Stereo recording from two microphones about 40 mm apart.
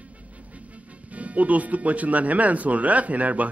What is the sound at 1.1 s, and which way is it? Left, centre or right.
A man's voice, right.